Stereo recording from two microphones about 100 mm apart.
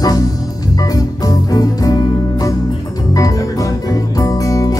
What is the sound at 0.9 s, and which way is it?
Music, 40° left (ahead or behind).